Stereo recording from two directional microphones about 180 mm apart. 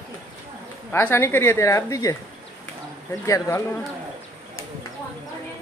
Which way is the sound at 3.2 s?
15° left (ahead or behind).